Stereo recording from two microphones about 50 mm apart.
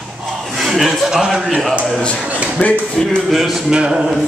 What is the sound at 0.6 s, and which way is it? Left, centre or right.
A man's voice, centre.